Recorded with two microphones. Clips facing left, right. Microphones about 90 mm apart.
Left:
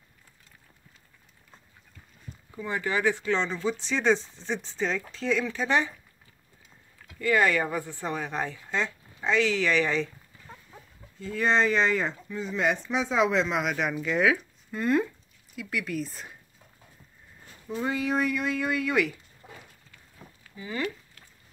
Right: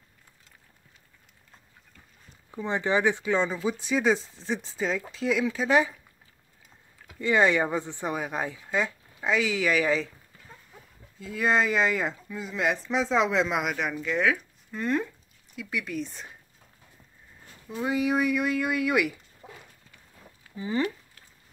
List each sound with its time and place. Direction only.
2.5 s speech: 20° right (ahead or behind); by 5.9 s 5° right (ahead or behind)
7.1 s speech: 20° right (ahead or behind); by 10.0 s 5° right (ahead or behind)
11.1 s speech: 5° right (ahead or behind)
17.6 s speech: 5° right (ahead or behind)
20.5 s speech: 30° right (ahead or behind)